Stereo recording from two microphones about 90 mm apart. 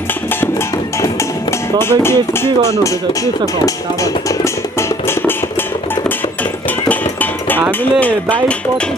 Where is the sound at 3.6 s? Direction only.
35° left (ahead or behind).